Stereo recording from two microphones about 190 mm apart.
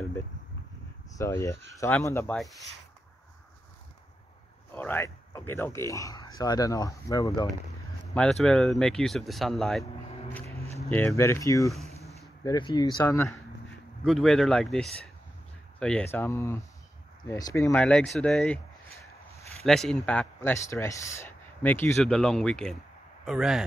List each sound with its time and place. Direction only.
1.1 s a man's voice: 15° left (ahead or behind)
2.3 s speech: centre (ahead or behind)
4.7 s a man's voice: 10° left (ahead or behind)
8.1 s speech: 5° left (ahead or behind)
10.4 s a sound: 30° right (ahead or behind)
10.9 s a man's voice: 10° left (ahead or behind)
12.0 s a sound: centre (ahead or behind)
12.4 s speech: 25° left (ahead or behind)
14.0 s a man's voice: centre (ahead or behind)
19.6 s a man's voice: centre (ahead or behind)